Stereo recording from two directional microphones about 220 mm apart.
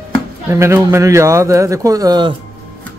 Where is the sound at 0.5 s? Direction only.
15° right (ahead or behind).